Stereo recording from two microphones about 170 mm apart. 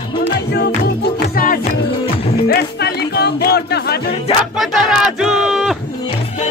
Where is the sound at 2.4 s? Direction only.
70° left (ahead or behind).